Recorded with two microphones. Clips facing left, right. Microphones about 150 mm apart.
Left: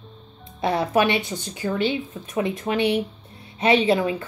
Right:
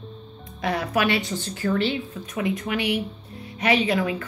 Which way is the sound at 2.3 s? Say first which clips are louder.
Left 2 dB; 30° left (ahead or behind).